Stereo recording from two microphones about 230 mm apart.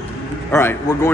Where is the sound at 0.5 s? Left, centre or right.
Centre.